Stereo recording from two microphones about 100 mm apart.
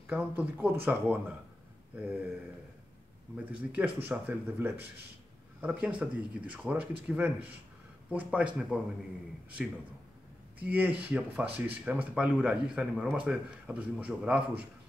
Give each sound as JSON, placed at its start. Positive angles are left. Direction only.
{"t": 0.0, "sound": "speech", "side_deg": -20}
{"t": 3.5, "sound": "speech", "side_deg": -15}
{"t": 10.6, "sound": "speech", "side_deg": -15}